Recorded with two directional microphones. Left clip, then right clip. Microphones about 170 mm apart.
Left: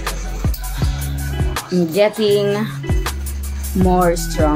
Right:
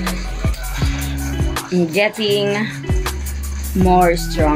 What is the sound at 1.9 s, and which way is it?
Speech, 10° left (ahead or behind).